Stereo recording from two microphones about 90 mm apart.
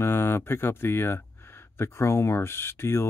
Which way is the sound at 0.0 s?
25° left (ahead or behind).